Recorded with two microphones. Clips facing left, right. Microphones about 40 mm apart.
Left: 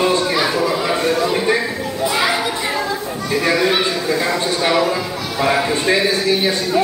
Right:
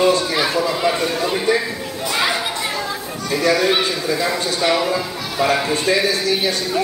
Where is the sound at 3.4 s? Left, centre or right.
Centre.